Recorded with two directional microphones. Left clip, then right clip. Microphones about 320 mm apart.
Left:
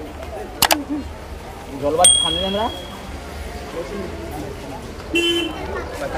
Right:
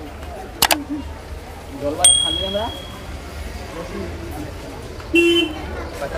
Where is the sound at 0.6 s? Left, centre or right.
Centre.